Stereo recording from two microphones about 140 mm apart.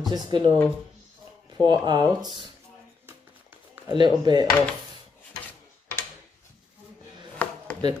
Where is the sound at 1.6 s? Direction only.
30° right (ahead or behind).